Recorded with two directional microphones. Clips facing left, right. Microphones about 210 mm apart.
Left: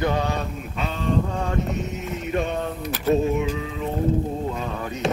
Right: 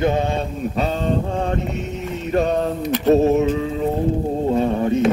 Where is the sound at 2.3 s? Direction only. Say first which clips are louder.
Right 7 dB; 40° right (ahead or behind).